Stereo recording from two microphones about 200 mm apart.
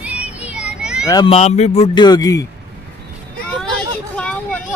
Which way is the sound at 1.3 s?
30° left (ahead or behind).